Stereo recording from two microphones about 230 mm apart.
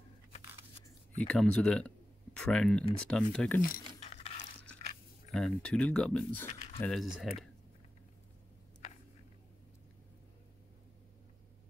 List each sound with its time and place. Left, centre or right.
1.2 s speech: centre
3.6 s a sound: left
5.3 s speech: centre